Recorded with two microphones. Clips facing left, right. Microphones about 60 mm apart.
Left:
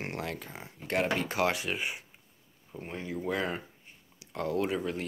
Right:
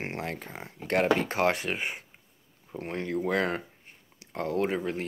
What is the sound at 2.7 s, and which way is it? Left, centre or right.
Speech, right.